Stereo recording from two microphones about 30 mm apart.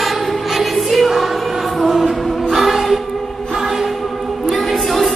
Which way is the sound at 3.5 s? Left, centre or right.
Centre.